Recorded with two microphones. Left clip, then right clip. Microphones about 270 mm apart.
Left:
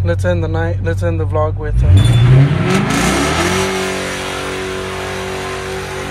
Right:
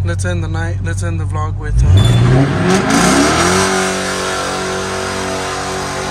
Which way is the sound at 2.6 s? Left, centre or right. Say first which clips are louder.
Right 4 dB; right.